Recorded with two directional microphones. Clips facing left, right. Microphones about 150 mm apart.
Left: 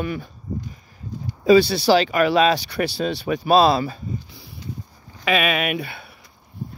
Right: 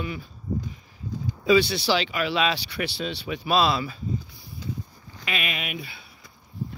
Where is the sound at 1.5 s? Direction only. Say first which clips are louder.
Left 6 dB; 35° left (ahead or behind).